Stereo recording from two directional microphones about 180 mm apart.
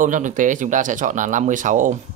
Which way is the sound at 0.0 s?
45° right (ahead or behind).